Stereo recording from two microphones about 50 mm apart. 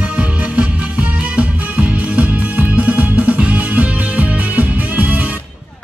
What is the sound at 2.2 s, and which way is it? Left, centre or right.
Music, right.